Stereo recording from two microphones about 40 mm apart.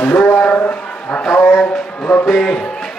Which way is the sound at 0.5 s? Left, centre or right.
Left.